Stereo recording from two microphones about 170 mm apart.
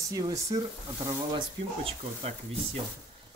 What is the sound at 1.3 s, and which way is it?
Speech, 35° right (ahead or behind).